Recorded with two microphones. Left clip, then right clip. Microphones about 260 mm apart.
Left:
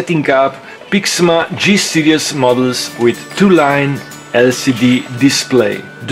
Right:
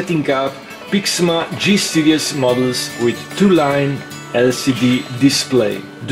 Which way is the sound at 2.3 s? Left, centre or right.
Left.